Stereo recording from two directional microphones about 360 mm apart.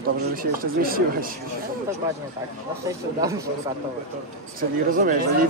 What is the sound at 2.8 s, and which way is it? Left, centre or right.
Speech, centre.